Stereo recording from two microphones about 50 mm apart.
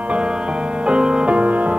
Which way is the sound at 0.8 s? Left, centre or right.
Centre.